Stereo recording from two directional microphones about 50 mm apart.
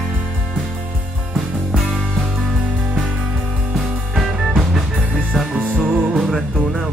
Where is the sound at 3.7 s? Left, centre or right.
Centre.